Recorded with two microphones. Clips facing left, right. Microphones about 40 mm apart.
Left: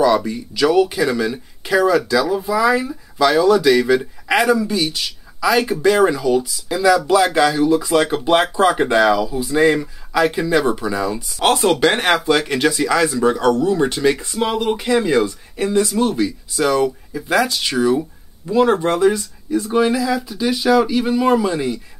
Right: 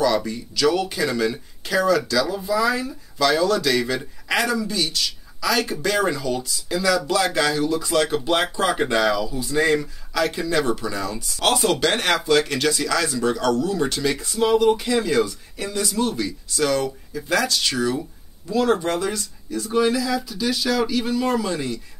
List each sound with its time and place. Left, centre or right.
0.0 s speech: centre